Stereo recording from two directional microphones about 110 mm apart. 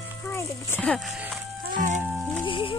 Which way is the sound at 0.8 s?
5° left (ahead or behind).